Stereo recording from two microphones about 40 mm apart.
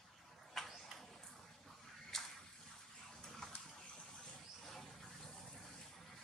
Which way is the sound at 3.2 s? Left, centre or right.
Centre.